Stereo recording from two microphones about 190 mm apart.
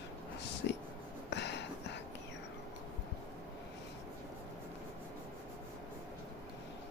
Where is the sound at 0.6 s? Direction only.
65° left (ahead or behind).